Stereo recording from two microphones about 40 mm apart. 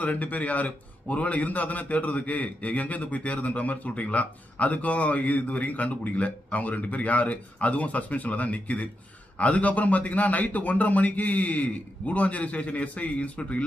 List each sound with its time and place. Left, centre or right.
0.0 s a man's voice: left